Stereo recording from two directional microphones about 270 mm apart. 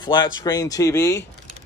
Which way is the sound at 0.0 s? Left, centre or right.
Centre.